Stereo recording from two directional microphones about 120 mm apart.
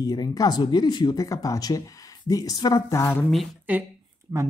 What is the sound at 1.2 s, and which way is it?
Speech, 25° left (ahead or behind).